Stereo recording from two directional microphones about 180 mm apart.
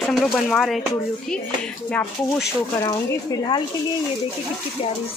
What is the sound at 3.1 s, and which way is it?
Speech, 20° left (ahead or behind).